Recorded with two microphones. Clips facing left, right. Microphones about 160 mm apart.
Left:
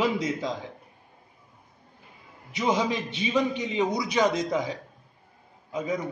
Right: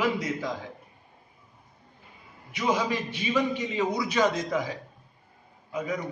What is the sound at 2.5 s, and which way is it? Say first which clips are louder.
A man's voice: left 1 dB; 20° left (ahead or behind).